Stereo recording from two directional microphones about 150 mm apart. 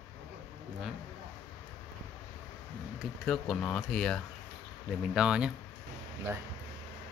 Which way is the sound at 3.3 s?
5° left (ahead or behind).